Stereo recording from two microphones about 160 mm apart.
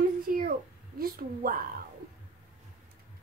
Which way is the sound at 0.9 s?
65° right (ahead or behind).